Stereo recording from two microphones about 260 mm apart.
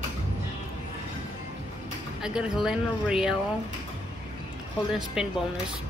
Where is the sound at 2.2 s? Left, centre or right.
Centre.